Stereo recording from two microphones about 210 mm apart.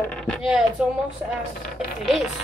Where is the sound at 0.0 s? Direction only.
5° left (ahead or behind).